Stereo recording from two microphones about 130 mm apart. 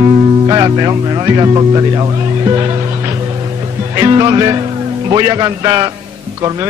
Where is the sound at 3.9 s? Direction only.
30° right (ahead or behind).